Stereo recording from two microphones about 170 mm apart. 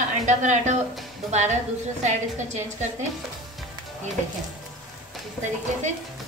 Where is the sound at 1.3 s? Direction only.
45° right (ahead or behind).